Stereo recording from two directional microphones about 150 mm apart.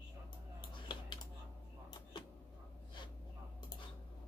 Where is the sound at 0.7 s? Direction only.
30° left (ahead or behind).